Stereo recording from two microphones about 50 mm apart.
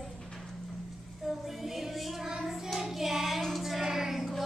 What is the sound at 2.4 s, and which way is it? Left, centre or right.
Child singing, centre.